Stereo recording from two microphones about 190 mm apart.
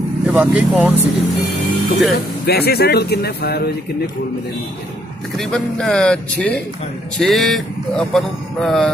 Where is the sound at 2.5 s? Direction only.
55° left (ahead or behind).